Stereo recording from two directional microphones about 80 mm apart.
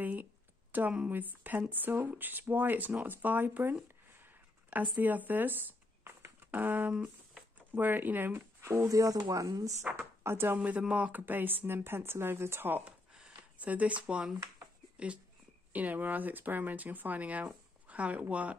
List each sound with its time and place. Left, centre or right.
0.0 s speech: right
6.2 s a sound: right
6.9 s a sound: centre
7.7 s speech: right
8.8 s speech: right
9.8 s speech: right
10.6 s speech: centre